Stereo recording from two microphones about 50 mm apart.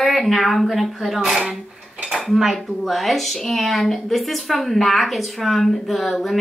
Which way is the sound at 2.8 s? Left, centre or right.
Centre.